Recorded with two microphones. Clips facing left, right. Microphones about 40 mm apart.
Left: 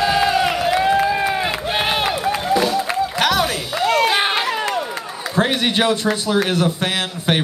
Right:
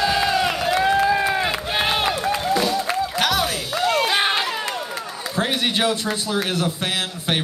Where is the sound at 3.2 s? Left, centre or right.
Centre.